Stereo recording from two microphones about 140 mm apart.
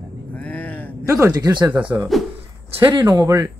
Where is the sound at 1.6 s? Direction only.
10° right (ahead or behind).